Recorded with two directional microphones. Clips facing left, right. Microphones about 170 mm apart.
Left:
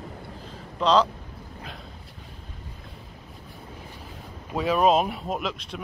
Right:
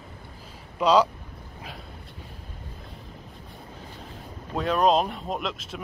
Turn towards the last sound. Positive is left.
turn(degrees=0)  # may be behind; listen again after turning